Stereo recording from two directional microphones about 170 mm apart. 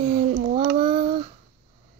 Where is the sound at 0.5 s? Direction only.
35° right (ahead or behind).